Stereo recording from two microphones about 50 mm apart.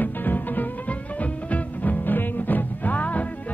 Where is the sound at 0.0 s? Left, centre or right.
Left.